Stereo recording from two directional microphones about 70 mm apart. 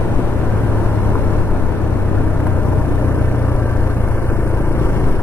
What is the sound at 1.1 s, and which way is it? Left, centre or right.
Vehicle, left.